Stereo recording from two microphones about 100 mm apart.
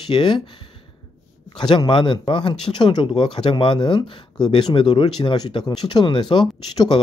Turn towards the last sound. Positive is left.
turn(degrees=55)  # may be behind; listen again after turning